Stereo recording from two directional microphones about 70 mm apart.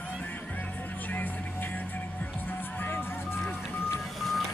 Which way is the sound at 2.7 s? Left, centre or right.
Left.